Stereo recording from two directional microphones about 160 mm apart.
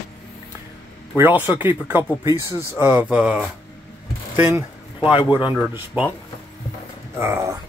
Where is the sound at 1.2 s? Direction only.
10° right (ahead or behind).